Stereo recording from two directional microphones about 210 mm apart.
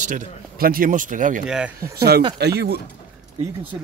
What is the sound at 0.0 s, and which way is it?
Speech, 35° right (ahead or behind).